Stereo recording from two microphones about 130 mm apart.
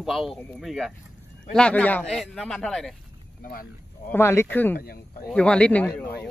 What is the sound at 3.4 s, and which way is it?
Speech, 90° left.